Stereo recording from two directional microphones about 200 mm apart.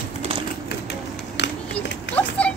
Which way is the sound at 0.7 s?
60° left (ahead or behind).